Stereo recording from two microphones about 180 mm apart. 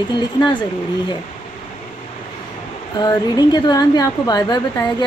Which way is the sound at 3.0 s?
20° left (ahead or behind).